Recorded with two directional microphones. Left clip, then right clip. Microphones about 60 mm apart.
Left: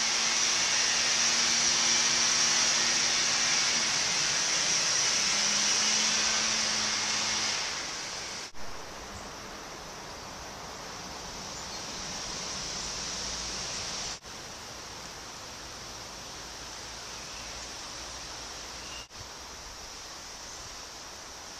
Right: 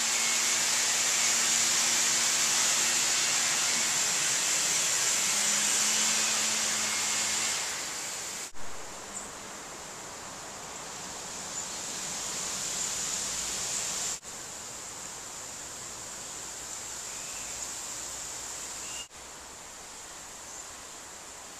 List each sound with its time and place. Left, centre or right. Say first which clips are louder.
0.1 s hair dryer: left 1 dB; centre